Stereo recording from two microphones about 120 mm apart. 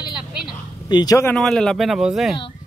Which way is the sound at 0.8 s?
35° left (ahead or behind).